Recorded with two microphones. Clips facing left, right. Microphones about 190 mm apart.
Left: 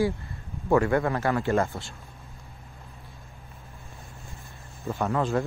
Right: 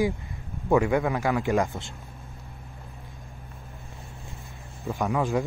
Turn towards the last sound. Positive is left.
turn(degrees=-10)  # may be behind; listen again after turning